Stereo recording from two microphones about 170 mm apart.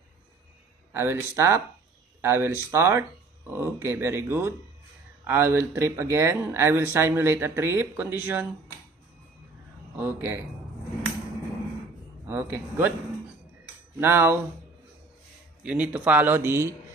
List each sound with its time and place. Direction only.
0.9 s speech: 15° right (ahead or behind)
9.9 s speech: 15° right (ahead or behind)
12.3 s speech: 10° right (ahead or behind)
13.9 s speech: 15° right (ahead or behind)
15.6 s speech: 10° right (ahead or behind)